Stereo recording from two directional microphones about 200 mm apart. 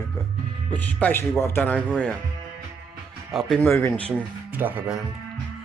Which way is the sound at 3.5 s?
10° left (ahead or behind).